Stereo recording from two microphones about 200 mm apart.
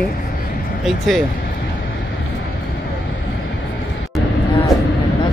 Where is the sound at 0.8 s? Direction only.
Centre (ahead or behind).